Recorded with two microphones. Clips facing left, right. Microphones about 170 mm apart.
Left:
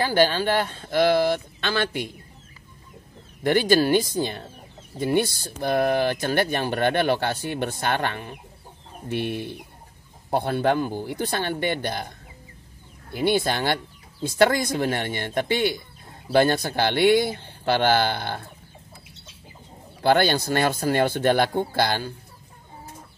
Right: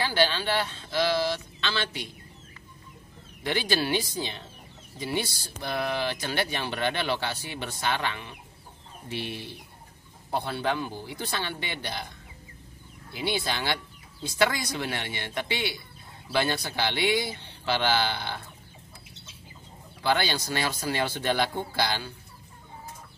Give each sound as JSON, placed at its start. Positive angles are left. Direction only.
{"t": 0.0, "sound": "speech", "side_deg": 50}
{"t": 3.4, "sound": "speech", "side_deg": 50}
{"t": 13.1, "sound": "speech", "side_deg": 50}
{"t": 20.0, "sound": "speech", "side_deg": 55}